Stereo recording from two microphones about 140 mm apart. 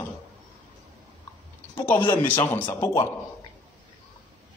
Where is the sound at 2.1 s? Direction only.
15° left (ahead or behind).